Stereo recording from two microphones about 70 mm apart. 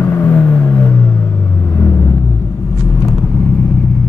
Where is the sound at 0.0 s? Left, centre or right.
Left.